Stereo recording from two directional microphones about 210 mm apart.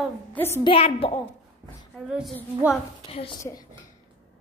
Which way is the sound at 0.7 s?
30° left (ahead or behind).